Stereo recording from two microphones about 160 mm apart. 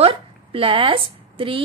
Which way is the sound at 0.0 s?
35° right (ahead or behind).